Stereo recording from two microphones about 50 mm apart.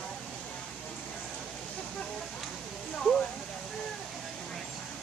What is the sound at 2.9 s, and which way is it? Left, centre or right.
Speech, centre.